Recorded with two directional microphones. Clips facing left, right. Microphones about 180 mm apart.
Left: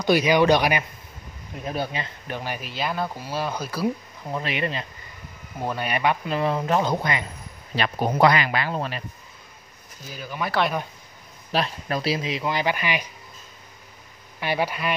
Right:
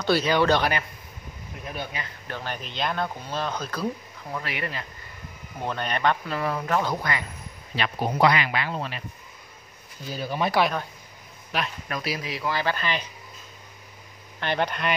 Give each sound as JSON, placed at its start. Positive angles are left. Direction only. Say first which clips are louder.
{"t": 0.0, "sound": "speech", "louder": "left 3 dB", "side_deg": 15}
{"t": 1.7, "sound": "speech", "louder": "left 6 dB", "side_deg": 30}
{"t": 2.2, "sound": "speech", "louder": "left 2 dB", "side_deg": 15}
{"t": 4.3, "sound": "speech", "louder": "left 5 dB", "side_deg": 20}
{"t": 5.6, "sound": "speech", "louder": "left 2 dB", "side_deg": 10}
{"t": 6.2, "sound": "speech", "louder": "left 4 dB", "side_deg": 20}
{"t": 7.7, "sound": "speech", "louder": "left 3 dB", "side_deg": 45}
{"t": 10.1, "sound": "speech", "louder": "right 4 dB", "side_deg": -35}
{"t": 11.5, "sound": "speech", "louder": "left 5 dB", "side_deg": 30}
{"t": 14.4, "sound": "speech", "louder": "left 1 dB", "side_deg": 5}